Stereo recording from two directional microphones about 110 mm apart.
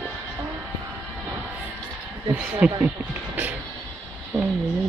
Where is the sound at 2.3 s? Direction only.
15° right (ahead or behind).